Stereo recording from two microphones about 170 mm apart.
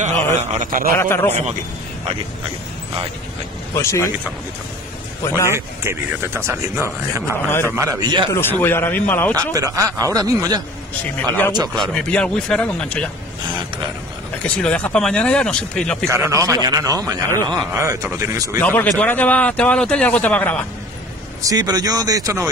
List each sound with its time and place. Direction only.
0.0 s a man's voice: 45° right (ahead or behind)
0.9 s a man's voice: 15° left (ahead or behind)
3.7 s a man's voice: 15° left (ahead or behind)
5.5 s speech: 15° right (ahead or behind)
7.2 s a man's voice: 15° left (ahead or behind)
7.7 s speech: 20° right (ahead or behind)
8.3 s a man's voice: 15° left (ahead or behind)
9.5 s speech: 20° right (ahead or behind)
11.7 s speech: 5° left (ahead or behind)
13.4 s a sound: 25° right (ahead or behind)
14.4 s speech: 5° left (ahead or behind)
16.1 s speech: 15° right (ahead or behind)
18.6 s a man's voice: 10° left (ahead or behind)
21.4 s speech: 20° right (ahead or behind)